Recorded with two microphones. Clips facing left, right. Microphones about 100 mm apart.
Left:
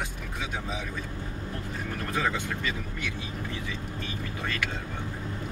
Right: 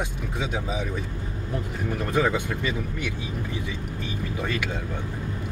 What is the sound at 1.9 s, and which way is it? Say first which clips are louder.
Speech: right 6 dB; 15° right (ahead or behind).